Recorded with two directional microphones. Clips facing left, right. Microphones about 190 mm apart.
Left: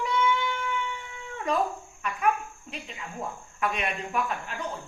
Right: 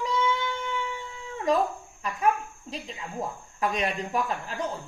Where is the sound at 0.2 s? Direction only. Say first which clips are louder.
Left 1 dB; 25° right (ahead or behind).